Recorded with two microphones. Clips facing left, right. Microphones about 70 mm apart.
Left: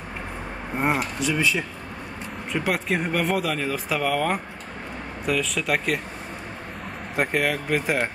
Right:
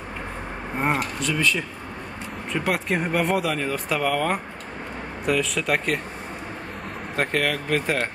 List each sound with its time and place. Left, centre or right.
0.7 s speech: centre
2.5 s speech: centre
7.2 s speech: centre